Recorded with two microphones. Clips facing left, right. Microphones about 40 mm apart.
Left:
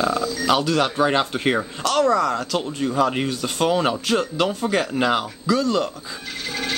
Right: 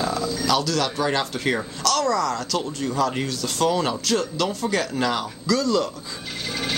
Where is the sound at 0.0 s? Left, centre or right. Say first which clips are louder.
Left 3 dB; centre.